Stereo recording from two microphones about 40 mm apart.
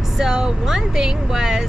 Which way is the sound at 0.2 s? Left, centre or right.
Centre.